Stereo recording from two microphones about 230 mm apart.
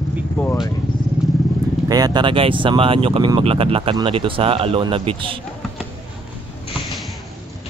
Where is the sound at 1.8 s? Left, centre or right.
Centre.